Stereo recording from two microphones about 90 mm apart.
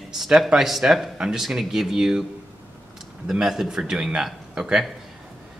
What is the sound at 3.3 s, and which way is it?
Speech, 5° right (ahead or behind).